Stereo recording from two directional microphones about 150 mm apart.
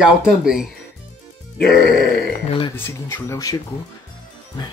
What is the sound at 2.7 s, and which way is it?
Speech, 15° left (ahead or behind).